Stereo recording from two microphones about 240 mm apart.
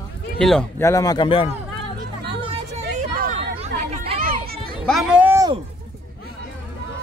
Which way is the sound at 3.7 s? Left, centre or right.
Right.